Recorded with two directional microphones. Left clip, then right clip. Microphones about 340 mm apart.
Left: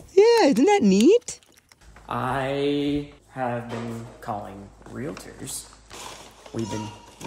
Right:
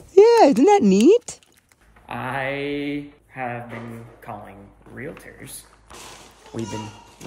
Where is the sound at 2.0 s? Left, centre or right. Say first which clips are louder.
Even; centre.